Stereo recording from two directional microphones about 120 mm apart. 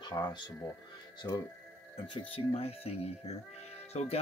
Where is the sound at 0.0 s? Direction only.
40° left (ahead or behind).